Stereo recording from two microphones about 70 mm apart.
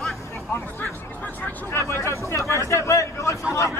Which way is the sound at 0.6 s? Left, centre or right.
Left.